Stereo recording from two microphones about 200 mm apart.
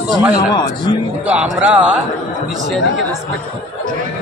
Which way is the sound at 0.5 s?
20° left (ahead or behind).